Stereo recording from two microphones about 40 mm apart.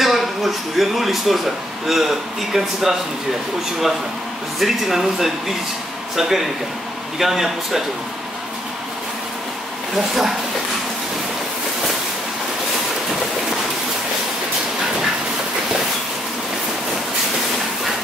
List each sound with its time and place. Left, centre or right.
0.0 s a man's voice: centre
4.6 s a man's voice: centre
9.9 s a man's voice: centre